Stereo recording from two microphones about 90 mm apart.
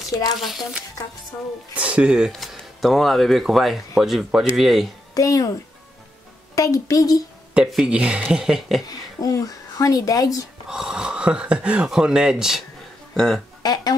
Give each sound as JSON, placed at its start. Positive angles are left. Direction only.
{"t": 0.4, "sound": "speech", "side_deg": -5}
{"t": 1.8, "sound": "speech", "side_deg": -15}
{"t": 5.1, "sound": "a child's voice", "side_deg": 40}
{"t": 6.5, "sound": "a woman's voice", "side_deg": 40}
{"t": 7.5, "sound": "speech", "side_deg": -10}
{"t": 8.8, "sound": "speech", "side_deg": 45}
{"t": 10.7, "sound": "speech", "side_deg": -5}
{"t": 13.1, "sound": "speech", "side_deg": 5}
{"t": 13.6, "sound": "speech", "side_deg": 50}